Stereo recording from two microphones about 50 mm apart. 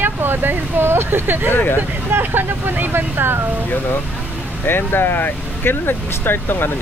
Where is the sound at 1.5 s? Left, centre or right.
Left.